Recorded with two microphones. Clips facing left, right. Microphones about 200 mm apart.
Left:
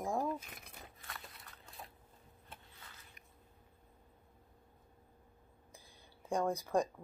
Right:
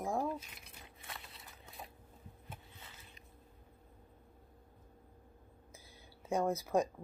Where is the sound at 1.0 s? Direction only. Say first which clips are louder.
Right 3 dB; 25° right (ahead or behind).